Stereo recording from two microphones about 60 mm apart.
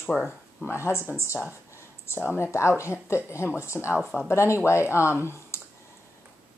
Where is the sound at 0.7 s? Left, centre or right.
Left.